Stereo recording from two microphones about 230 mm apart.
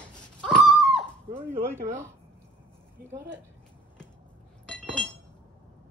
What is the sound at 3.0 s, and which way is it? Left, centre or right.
Speech, right.